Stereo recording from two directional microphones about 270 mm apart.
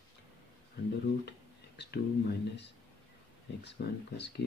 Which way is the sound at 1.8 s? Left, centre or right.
Left.